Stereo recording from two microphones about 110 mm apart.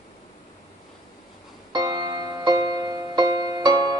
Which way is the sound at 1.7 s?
40° right (ahead or behind).